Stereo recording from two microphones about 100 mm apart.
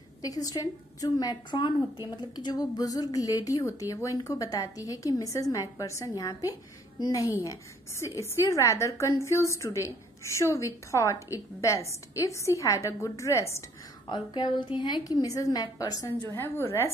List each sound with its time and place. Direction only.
0.2 s a woman's voice: 40° left (ahead or behind)
14.0 s a woman's voice: 50° left (ahead or behind)
16.3 s a woman's voice: 25° left (ahead or behind)